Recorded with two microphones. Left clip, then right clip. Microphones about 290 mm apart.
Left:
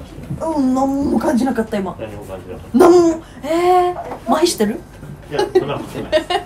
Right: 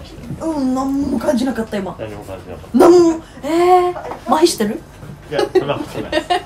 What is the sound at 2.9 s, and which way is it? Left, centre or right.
Speech, centre.